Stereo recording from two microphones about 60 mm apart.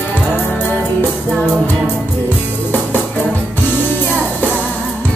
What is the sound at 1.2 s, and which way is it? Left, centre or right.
Music, centre.